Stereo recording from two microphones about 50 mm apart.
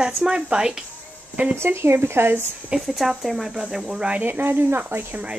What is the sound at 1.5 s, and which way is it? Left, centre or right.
Speech, right.